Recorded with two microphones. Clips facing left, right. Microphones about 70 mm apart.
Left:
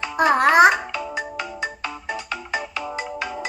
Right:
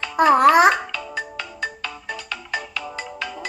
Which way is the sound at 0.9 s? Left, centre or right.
Left.